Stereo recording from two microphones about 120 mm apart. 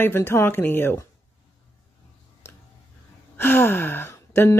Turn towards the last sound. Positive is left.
turn(degrees=25)  # may be behind; listen again after turning